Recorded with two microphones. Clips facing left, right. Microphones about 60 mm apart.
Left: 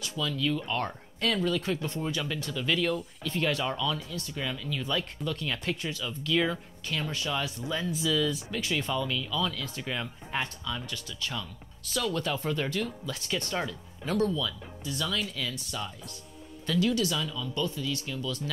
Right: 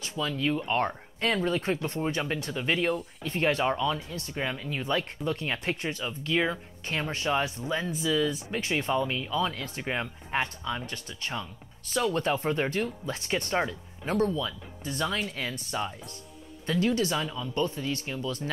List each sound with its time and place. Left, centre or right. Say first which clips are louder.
0.0 s speech: right 1 dB; right